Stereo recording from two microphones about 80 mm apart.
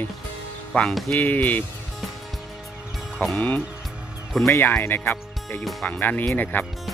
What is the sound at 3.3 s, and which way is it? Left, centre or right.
Speech, left.